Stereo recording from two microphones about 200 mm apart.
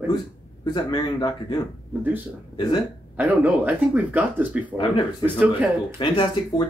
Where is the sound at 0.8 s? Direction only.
20° left (ahead or behind).